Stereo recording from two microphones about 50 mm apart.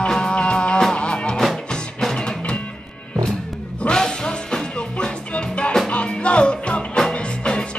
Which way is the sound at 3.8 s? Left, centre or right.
Centre.